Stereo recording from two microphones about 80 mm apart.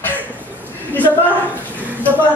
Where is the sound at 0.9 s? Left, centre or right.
Left.